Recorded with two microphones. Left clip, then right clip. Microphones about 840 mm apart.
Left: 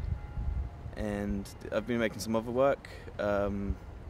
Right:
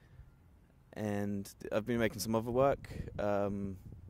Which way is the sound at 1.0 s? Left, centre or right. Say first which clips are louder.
Left 2 dB; right.